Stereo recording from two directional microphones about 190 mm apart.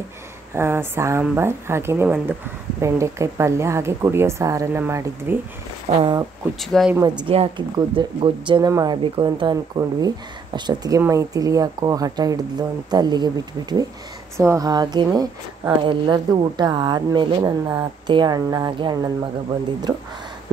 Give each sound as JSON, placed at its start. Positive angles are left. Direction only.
{"t": 0.5, "sound": "speech", "side_deg": -15}
{"t": 5.9, "sound": "speech", "side_deg": -35}
{"t": 6.6, "sound": "speech", "side_deg": 0}
{"t": 7.2, "sound": "speech", "side_deg": -30}